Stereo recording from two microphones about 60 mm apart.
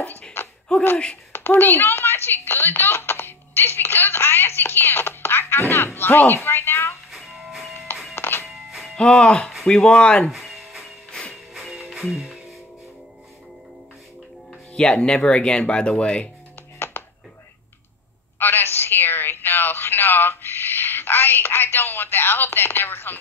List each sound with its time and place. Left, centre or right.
0.4 s a sound: left
1.3 s speech: left
7.1 s music: centre
8.1 s music: left
8.5 s music: centre
8.9 s speech: centre
10.3 s music: centre
11.1 s music: centre
11.3 s music: centre
14.7 s speech: centre
16.8 s music: left
18.4 s a sound: left